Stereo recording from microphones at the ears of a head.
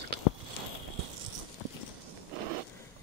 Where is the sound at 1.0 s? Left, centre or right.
Right.